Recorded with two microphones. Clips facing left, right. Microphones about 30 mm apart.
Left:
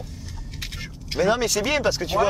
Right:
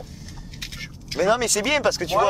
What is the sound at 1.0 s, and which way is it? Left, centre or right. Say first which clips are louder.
Speech: right 1 dB; centre.